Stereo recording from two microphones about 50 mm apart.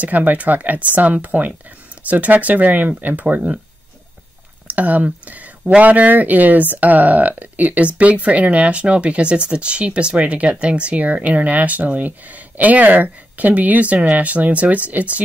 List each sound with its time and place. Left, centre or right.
0.0 s speech: right
3.3 s speech: right
4.6 s speech: right